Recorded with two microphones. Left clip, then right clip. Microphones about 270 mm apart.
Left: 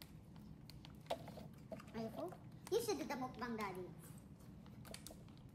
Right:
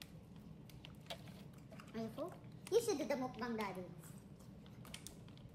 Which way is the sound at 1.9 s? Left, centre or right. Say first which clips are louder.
Right 2 dB; centre.